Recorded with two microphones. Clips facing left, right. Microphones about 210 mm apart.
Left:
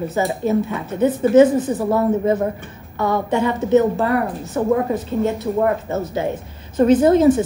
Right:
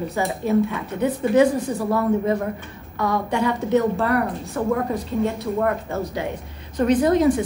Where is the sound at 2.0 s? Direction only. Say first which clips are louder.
Left 3 dB; 25° left (ahead or behind).